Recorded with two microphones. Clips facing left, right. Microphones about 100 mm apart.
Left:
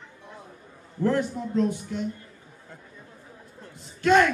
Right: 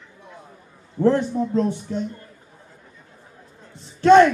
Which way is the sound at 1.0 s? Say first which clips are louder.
Right 6 dB; 30° right (ahead or behind).